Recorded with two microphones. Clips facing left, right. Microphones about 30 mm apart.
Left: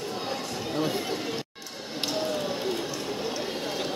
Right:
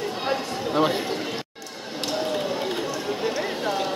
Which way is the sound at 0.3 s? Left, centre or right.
Right.